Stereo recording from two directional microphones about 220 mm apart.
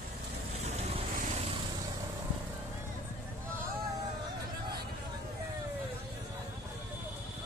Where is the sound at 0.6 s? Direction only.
30° right (ahead or behind).